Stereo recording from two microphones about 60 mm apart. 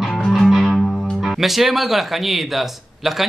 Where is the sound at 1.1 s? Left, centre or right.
Centre.